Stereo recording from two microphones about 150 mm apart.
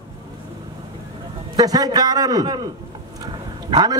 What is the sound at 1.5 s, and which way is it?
A man's voice, 25° right (ahead or behind).